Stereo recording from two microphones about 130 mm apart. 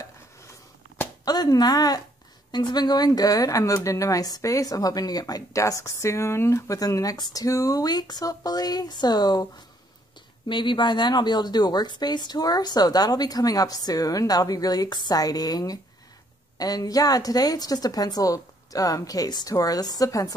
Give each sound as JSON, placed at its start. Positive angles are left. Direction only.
{"t": 1.2, "sound": "a woman's voice", "side_deg": 30}
{"t": 10.5, "sound": "a woman's voice", "side_deg": 35}